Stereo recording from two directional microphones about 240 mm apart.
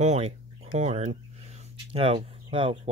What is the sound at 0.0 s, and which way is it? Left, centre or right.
Speech, right.